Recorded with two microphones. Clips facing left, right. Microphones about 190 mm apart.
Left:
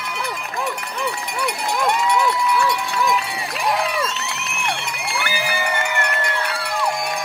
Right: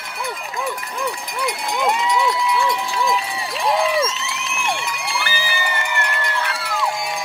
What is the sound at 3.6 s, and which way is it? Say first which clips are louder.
Run: right 3 dB; 25° right (ahead or behind).